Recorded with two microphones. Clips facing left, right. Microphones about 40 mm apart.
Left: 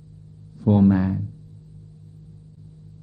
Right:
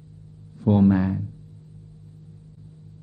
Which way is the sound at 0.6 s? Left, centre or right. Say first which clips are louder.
Left 1 dB; right.